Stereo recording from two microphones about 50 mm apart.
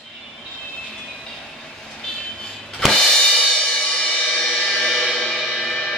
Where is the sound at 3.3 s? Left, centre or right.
Centre.